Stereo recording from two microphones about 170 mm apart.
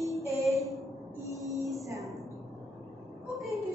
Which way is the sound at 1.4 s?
20° right (ahead or behind).